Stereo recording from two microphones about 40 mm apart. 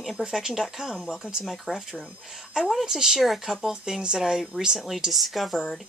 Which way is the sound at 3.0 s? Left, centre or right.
Centre.